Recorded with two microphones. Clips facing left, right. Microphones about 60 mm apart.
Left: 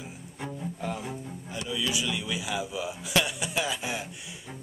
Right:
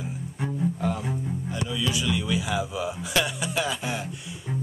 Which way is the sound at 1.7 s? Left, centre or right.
Centre.